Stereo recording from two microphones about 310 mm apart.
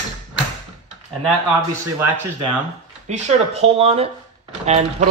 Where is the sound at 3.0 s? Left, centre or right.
Right.